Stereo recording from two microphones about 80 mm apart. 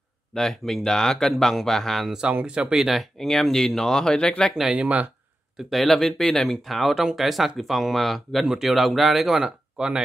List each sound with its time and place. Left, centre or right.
0.3 s speech: centre
2.4 s speech: centre
4.7 s speech: centre
5.7 s speech: centre